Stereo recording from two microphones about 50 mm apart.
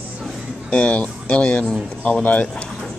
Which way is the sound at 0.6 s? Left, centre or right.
Left.